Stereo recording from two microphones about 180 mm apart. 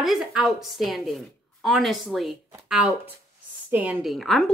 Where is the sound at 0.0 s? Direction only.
Centre (ahead or behind).